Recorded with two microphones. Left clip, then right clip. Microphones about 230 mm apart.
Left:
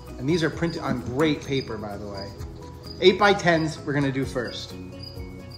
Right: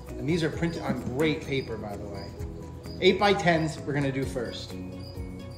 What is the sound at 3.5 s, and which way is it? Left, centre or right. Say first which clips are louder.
Speech: left 3 dB; centre.